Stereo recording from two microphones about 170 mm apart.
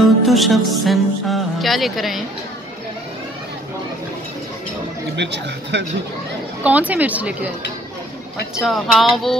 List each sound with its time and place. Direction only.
0.3 s speech: centre (ahead or behind)
5.1 s speech: 90° right
6.6 s speech: 10° right (ahead or behind)
8.5 s speech: centre (ahead or behind)